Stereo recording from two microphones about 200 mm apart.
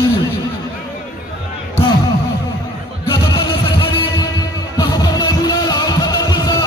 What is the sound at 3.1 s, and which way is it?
Music, 20° left (ahead or behind).